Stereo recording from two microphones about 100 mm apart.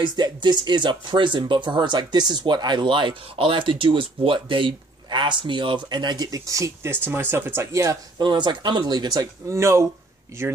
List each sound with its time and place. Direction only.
0.0 s speech: 50° right (ahead or behind); by 8.0 s 30° right (ahead or behind)
8.2 s speech: 50° right (ahead or behind); by 10.5 s 25° right (ahead or behind)